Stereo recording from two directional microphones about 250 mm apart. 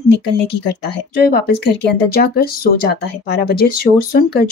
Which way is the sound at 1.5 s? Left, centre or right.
Left.